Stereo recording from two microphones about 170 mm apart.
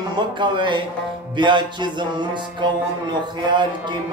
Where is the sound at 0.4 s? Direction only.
30° right (ahead or behind).